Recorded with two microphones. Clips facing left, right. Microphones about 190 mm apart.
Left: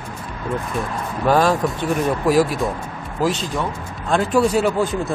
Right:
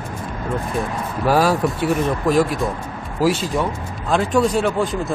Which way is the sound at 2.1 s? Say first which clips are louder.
Left 4 dB; 5° left (ahead or behind).